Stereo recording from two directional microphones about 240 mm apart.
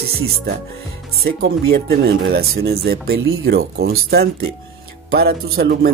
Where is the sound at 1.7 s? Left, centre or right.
Right.